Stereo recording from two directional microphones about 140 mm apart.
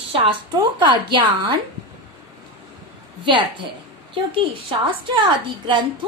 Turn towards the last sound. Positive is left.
turn(degrees=-35)  # may be behind; listen again after turning